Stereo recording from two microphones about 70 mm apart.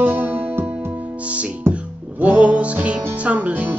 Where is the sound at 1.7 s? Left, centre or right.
Centre.